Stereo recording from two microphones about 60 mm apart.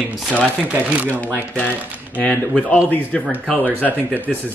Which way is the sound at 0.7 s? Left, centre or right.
Right.